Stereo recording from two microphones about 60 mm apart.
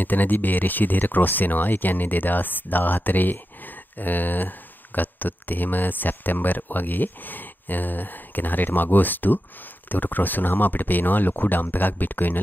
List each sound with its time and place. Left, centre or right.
0.0 s speech: left